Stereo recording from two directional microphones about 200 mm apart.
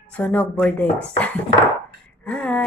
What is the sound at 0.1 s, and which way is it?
A woman's voice, 5° left (ahead or behind).